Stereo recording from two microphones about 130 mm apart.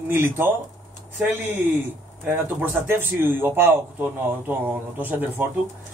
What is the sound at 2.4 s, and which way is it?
Speech, 15° right (ahead or behind).